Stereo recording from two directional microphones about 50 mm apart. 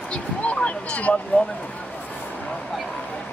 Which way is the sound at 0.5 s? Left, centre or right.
Left.